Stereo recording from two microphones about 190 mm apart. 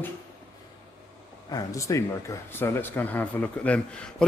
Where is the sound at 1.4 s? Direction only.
20° left (ahead or behind).